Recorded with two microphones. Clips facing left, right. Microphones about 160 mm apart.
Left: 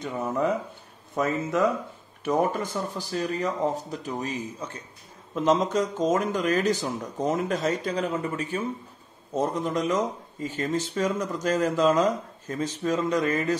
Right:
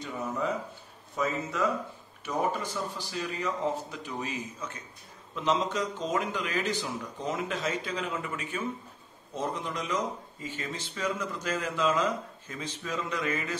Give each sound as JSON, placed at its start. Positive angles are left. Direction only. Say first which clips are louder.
{"t": 1.1, "sound": "speech", "louder": "left 6 dB", "side_deg": 55}
{"t": 5.3, "sound": "speech", "louder": "left 6 dB", "side_deg": 45}